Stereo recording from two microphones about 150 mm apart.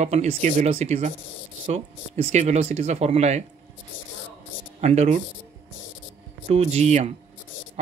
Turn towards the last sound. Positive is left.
turn(degrees=-45)  # may be behind; listen again after turning